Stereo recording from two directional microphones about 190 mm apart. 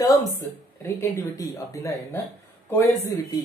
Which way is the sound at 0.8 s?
15° left (ahead or behind).